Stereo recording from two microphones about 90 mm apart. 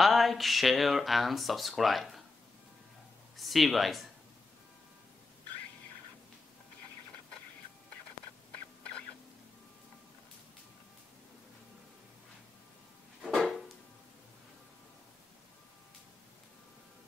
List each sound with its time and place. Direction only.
0.0 s speech: centre (ahead or behind)
3.3 s speech: centre (ahead or behind)
13.3 s a sound: centre (ahead or behind)